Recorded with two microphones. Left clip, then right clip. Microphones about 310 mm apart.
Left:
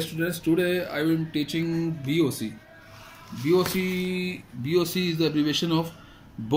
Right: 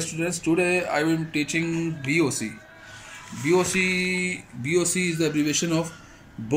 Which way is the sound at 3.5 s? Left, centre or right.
Centre.